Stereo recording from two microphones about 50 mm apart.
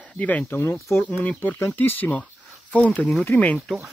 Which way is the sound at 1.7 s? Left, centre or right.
Left.